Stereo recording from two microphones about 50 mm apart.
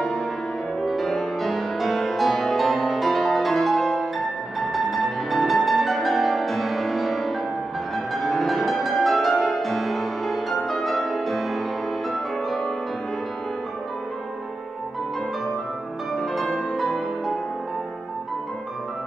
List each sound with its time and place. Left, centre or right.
0.7 s music: centre
16.2 s music: centre